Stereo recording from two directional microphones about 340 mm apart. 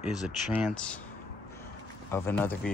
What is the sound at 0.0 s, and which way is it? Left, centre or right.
Speech, centre.